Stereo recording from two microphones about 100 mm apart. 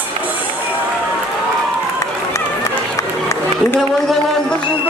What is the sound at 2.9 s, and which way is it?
Run, 30° left (ahead or behind).